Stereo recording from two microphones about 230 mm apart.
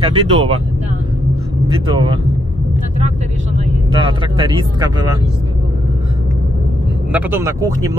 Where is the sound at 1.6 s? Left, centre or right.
Centre.